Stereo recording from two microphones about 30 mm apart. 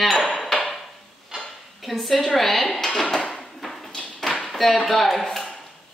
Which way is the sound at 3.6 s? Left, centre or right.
Centre.